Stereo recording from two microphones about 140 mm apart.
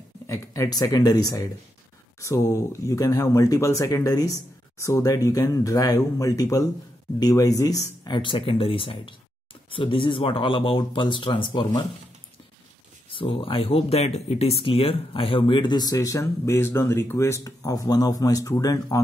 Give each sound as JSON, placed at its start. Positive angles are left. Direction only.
{"t": 0.3, "sound": "speech", "side_deg": 25}
{"t": 13.1, "sound": "speech", "side_deg": 40}